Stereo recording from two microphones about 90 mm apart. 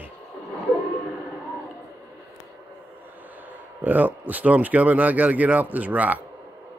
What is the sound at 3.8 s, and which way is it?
Speech, 20° right (ahead or behind).